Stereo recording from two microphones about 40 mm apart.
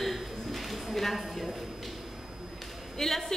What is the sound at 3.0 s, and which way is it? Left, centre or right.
Speech, centre.